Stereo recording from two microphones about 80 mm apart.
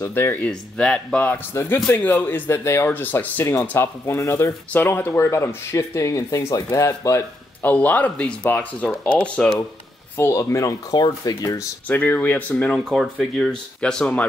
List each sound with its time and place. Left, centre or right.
0.0 s speech: left
0.5 s speech: centre
1.2 s speech: left
2.9 s speech: left
7.6 s speech: left
10.1 s speech: left
11.9 s speech: left
12.9 s speech: centre